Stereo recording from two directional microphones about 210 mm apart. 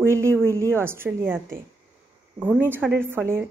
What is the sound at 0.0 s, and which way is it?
Speech, 10° right (ahead or behind).